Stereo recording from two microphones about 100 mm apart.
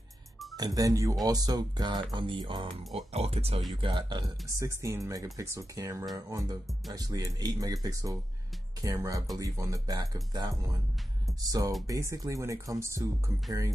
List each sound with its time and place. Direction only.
0.6 s speech: 40° right (ahead or behind)
2.1 s music: 55° right (ahead or behind)
3.1 s speech: 90° right
3.7 s speech: 50° right (ahead or behind)
4.6 s speech: 30° right (ahead or behind)